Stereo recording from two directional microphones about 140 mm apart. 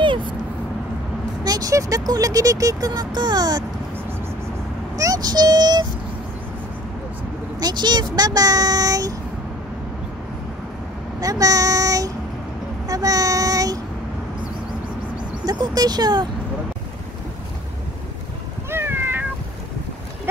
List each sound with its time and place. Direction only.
0.0 s a sound: 35° right (ahead or behind)
1.4 s speech: 25° right (ahead or behind)
4.9 s speech: 25° right (ahead or behind)
7.6 s speech: 30° right (ahead or behind)
11.1 s speech: 25° right (ahead or behind)
12.8 s child singing: 25° right (ahead or behind)
15.4 s speech: 30° right (ahead or behind)
18.7 s cat: 15° right (ahead or behind)